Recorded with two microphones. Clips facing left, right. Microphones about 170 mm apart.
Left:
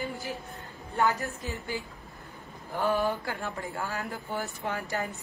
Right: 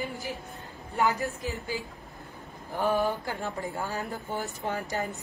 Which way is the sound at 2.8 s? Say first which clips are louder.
Right 1 dB; 20° right (ahead or behind).